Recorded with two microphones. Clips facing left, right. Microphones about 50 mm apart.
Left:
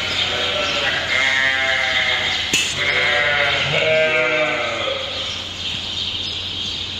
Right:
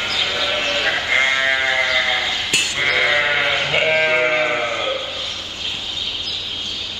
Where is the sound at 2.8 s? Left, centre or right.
Right.